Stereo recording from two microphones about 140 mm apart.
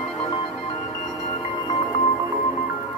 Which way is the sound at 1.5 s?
30° left (ahead or behind).